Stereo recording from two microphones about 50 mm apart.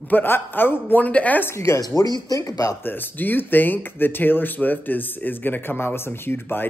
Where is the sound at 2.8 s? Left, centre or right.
Left.